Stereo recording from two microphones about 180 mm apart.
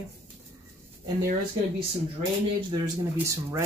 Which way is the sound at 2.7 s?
15° right (ahead or behind).